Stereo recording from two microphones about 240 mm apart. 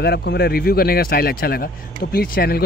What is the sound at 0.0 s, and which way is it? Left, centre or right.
Speech, left.